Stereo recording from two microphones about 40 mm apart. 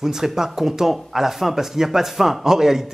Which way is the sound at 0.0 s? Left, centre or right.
Centre.